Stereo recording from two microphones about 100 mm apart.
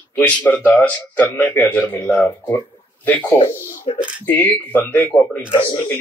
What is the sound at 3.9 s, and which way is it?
Speech, 65° left (ahead or behind).